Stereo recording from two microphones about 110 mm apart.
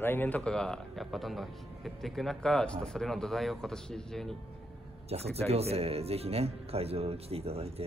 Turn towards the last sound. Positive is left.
turn(degrees=-65)  # may be behind; listen again after turning